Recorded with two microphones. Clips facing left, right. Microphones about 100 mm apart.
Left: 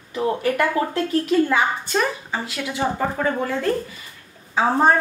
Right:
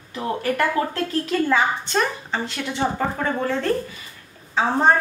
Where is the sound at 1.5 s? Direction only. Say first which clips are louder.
Even; 5° left (ahead or behind).